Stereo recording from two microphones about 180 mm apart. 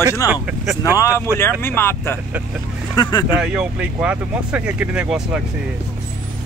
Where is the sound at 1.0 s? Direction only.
15° left (ahead or behind).